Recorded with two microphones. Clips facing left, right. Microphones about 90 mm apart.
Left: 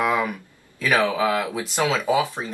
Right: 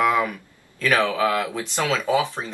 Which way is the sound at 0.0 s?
15° left (ahead or behind).